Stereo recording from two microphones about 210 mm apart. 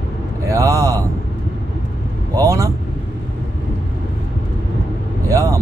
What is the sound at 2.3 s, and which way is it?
Speech, 15° right (ahead or behind).